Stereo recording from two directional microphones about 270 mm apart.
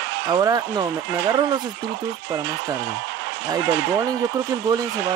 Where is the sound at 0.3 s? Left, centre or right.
Centre.